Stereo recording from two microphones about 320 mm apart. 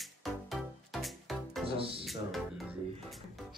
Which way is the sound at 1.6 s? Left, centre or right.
Centre.